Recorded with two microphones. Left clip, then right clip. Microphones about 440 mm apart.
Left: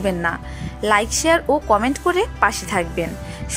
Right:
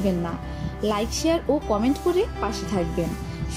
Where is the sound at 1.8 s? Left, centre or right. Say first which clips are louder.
Left 4 dB; centre.